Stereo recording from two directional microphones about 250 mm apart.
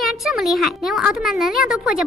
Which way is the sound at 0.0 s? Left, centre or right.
Centre.